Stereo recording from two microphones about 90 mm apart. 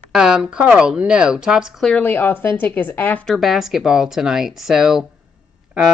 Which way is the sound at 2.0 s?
20° left (ahead or behind).